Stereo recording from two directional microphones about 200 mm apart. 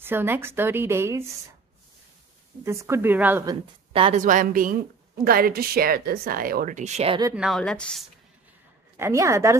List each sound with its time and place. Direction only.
0.0 s a woman's voice: 10° right (ahead or behind)
2.6 s a woman's voice: 15° right (ahead or behind)
3.9 s speech: 25° right (ahead or behind)
4.2 s a woman's voice: 40° right (ahead or behind)
7.3 s a woman's voice: centre (ahead or behind)
8.9 s a woman's voice: 15° right (ahead or behind)